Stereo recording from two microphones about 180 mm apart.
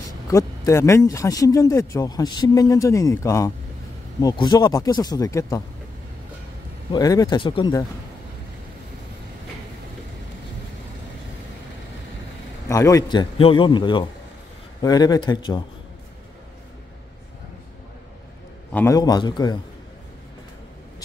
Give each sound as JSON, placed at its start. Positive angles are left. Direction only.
{"t": 0.3, "sound": "speech", "side_deg": 15}
{"t": 6.9, "sound": "speech", "side_deg": 20}
{"t": 12.6, "sound": "speech", "side_deg": 20}
{"t": 18.7, "sound": "a man's voice", "side_deg": 10}
{"t": 18.9, "sound": "speech", "side_deg": 25}